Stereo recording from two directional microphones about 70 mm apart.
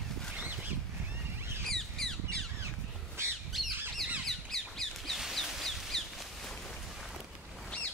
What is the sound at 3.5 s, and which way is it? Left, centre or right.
Squawk, centre.